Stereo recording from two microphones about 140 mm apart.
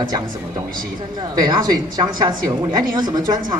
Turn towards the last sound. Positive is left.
turn(degrees=-30)  # may be behind; listen again after turning